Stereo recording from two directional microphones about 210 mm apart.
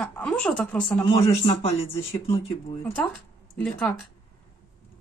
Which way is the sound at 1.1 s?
25° left (ahead or behind).